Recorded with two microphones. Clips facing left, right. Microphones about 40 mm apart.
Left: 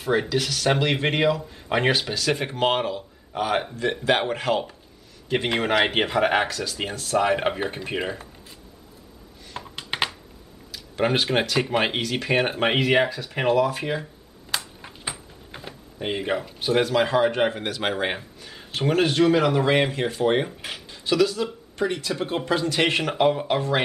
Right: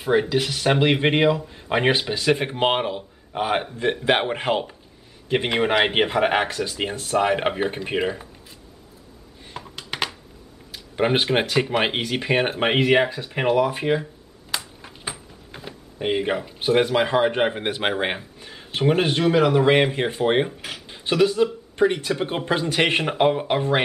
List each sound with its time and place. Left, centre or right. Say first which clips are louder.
0.3 s speech: right 2 dB; right
9.8 s computer keyboard: left 1 dB; centre
10.7 s a sound: right 2 dB; centre
11.8 s speech: right 1 dB; centre
14.8 s a sound: right 1 dB; centre
16.0 s speech: right 3 dB; centre
19.6 s speech: right 3 dB; right
20.4 s speech: right 1 dB; centre
20.9 s speech: right 2 dB; right